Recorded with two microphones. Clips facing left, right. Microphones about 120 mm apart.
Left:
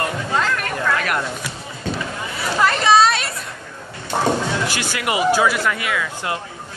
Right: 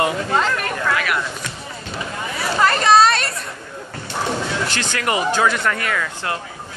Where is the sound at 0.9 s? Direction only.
40° left (ahead or behind).